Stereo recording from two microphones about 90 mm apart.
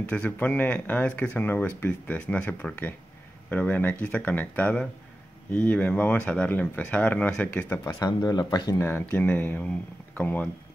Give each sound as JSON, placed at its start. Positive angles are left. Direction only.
{"t": 0.1, "sound": "speech", "side_deg": 15}
{"t": 7.9, "sound": "speech", "side_deg": 45}
{"t": 8.7, "sound": "speech", "side_deg": 25}